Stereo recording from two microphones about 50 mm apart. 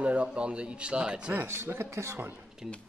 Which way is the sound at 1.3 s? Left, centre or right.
Right.